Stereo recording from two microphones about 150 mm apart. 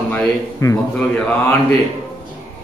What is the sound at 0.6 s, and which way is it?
Speech, 15° left (ahead or behind).